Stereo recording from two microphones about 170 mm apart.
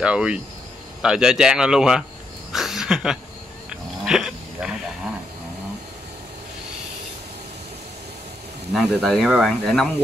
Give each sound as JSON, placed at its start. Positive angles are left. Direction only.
{"t": 0.0, "sound": "speech", "side_deg": -5}
{"t": 2.5, "sound": "a sound", "side_deg": 0}
{"t": 4.0, "sound": "dog", "side_deg": -5}
{"t": 8.7, "sound": "speech", "side_deg": 0}